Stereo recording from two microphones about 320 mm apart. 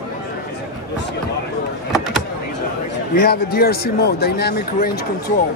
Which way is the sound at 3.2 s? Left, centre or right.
Left.